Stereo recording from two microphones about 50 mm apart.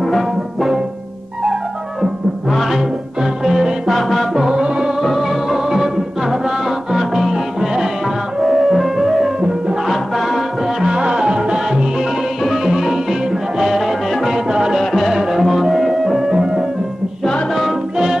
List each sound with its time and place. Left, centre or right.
0.0 s music: centre
2.5 s music: centre
3.2 s music: centre
4.5 s music: centre
5.0 s music: centre
10.9 s music: centre
14.8 s music: centre